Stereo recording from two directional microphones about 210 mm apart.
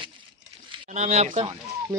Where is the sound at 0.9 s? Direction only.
35° right (ahead or behind).